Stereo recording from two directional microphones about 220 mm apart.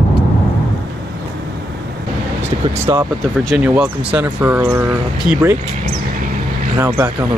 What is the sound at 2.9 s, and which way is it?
Speech, 15° right (ahead or behind).